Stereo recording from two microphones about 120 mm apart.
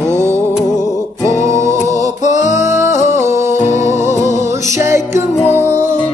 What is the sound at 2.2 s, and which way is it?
Music, 85° left.